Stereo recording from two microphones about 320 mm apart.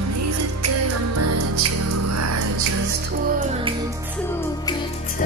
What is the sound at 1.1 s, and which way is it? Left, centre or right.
Music, right.